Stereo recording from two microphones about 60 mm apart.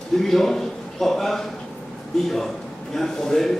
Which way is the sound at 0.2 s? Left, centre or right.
Centre.